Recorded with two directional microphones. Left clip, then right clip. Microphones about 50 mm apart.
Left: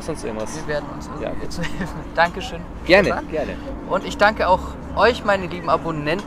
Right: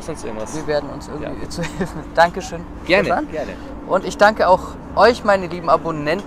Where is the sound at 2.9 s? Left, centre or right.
Centre.